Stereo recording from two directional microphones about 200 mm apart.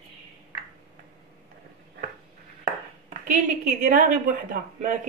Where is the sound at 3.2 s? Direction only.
40° right (ahead or behind).